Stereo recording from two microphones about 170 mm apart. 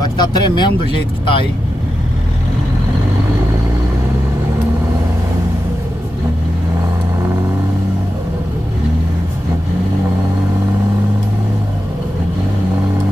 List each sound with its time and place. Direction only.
0.2 s speech: 25° left (ahead or behind)